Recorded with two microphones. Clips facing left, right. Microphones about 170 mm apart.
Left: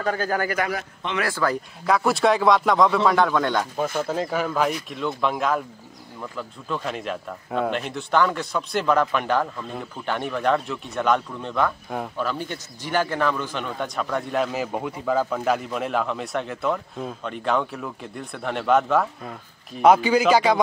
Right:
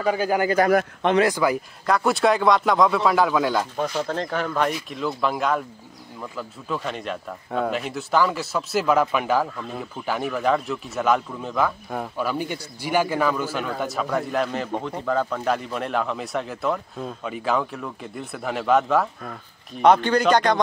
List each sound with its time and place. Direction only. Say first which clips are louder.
0.0 s a man's voice: right 3 dB; 10° right (ahead or behind)
0.7 s a man's voice: right 10 dB; 55° right (ahead or behind)
1.2 s a man's voice: right 4 dB; 15° right (ahead or behind)
1.9 s a man's voice: even; centre (ahead or behind)